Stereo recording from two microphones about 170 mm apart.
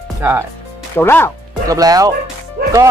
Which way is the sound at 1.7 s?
20° right (ahead or behind).